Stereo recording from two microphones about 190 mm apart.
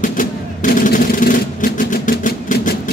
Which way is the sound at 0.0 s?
45° left (ahead or behind).